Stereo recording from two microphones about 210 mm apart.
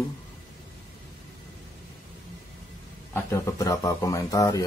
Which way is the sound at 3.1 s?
15° left (ahead or behind).